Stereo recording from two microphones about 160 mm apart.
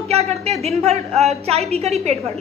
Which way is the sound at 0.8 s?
40° right (ahead or behind).